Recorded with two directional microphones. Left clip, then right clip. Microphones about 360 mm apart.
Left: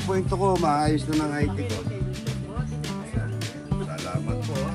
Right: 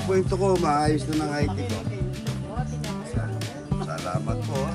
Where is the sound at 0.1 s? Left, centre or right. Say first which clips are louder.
Right 1 dB; centre.